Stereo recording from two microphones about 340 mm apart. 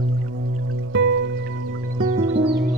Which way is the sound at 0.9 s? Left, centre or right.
Right.